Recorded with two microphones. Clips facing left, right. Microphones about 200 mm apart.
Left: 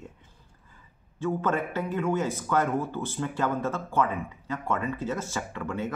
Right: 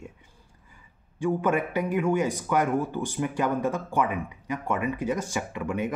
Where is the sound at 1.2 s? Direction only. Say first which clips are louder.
Right 3 dB; 15° right (ahead or behind).